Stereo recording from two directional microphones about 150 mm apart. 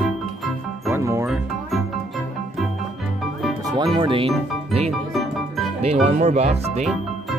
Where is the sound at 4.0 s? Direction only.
35° right (ahead or behind).